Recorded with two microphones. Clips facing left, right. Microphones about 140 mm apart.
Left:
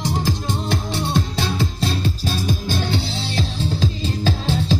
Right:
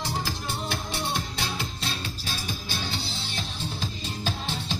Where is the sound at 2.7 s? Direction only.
70° left (ahead or behind); by 4.8 s 90° left.